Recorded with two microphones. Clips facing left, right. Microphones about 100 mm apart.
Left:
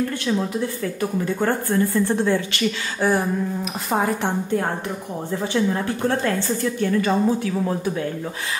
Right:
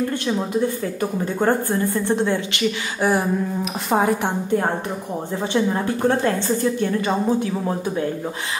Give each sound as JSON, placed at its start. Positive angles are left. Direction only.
{"t": 1.2, "sound": "a woman's voice", "side_deg": -20}
{"t": 5.4, "sound": "a woman's voice", "side_deg": -20}